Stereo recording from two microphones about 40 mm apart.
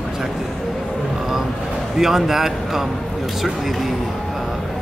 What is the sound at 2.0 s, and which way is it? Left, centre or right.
Speech, centre.